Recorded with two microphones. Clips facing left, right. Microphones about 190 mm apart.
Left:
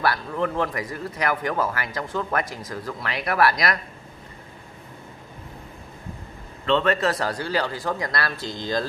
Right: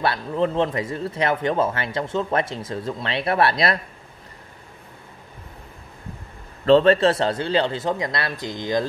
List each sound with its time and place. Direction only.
0.0 s speech: 20° right (ahead or behind)
6.6 s speech: 35° right (ahead or behind); by 8.8 s 20° right (ahead or behind)